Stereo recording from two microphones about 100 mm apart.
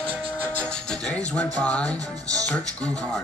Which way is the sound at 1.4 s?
10° left (ahead or behind).